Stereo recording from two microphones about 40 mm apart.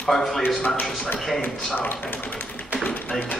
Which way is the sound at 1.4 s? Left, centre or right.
Left.